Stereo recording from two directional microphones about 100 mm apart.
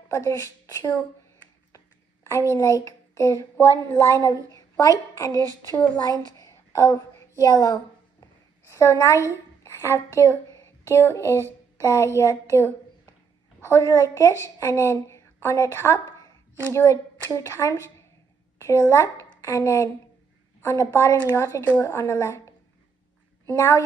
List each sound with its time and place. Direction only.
0.1 s a woman's voice: 30° left (ahead or behind)
2.2 s a child's voice: 30° left (ahead or behind)
4.5 s a sound: 35° left (ahead or behind)
5.1 s speech: 35° left (ahead or behind)
5.4 s speech: 40° right (ahead or behind)
5.8 s speech: 45° left (ahead or behind)
6.3 s a sound: 30° left (ahead or behind)
9.3 s a woman's voice: 30° left (ahead or behind)